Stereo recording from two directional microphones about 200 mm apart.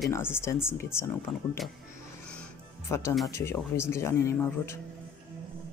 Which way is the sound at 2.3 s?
10° left (ahead or behind).